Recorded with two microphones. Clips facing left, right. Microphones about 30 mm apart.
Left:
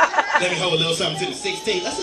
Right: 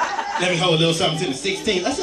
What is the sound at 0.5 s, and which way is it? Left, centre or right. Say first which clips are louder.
Speech: right 2 dB; centre.